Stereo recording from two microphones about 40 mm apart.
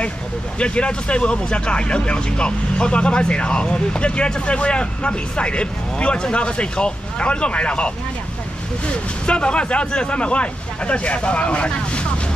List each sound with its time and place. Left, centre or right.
0.6 s speech: left